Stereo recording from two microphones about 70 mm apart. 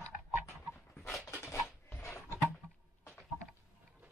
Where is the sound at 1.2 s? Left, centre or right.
Left.